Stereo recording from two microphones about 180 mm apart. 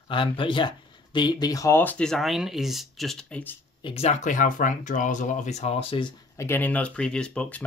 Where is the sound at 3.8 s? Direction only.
35° left (ahead or behind).